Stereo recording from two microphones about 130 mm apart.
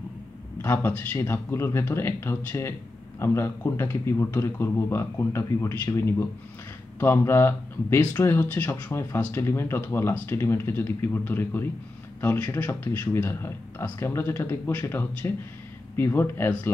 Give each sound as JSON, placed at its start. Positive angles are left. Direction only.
{"t": 0.6, "sound": "a man's voice", "side_deg": 15}